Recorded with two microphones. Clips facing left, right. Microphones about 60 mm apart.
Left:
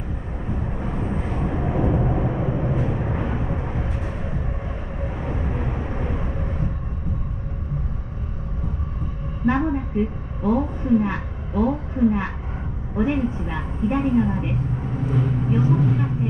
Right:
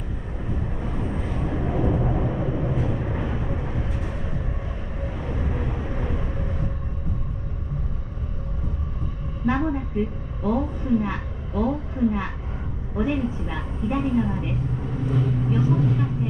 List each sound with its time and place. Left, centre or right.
0.6 s vehicle: centre
9.5 s a sound: centre
10.4 s a woman's voice: centre
14.4 s vehicle: centre